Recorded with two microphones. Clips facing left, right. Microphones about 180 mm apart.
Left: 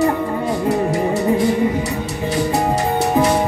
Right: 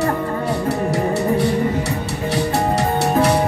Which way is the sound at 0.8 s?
65° right (ahead or behind).